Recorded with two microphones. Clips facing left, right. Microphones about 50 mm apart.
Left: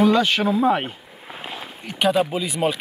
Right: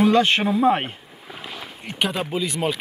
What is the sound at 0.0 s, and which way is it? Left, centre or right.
Speech, right.